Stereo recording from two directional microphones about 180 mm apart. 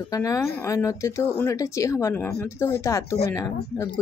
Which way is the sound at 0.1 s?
20° left (ahead or behind).